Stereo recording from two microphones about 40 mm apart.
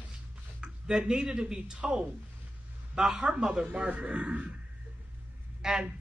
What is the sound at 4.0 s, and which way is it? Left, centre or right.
Speech, right.